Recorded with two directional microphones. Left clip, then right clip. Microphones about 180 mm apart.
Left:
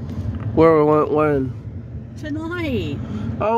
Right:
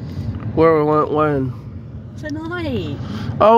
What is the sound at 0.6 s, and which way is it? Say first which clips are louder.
Speech: even; 5° left (ahead or behind).